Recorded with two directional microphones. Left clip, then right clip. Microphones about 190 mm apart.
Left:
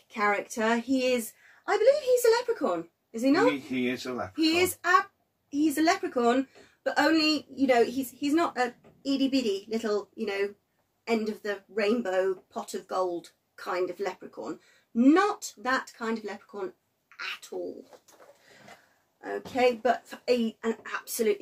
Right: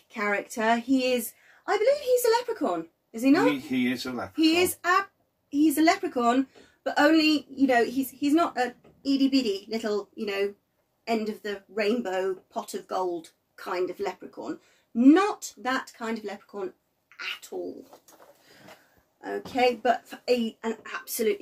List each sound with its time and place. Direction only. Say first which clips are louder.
0.1 s a woman's voice: left 1 dB; centre (ahead or behind)
19.2 s a woman's voice: right 1 dB; centre (ahead or behind)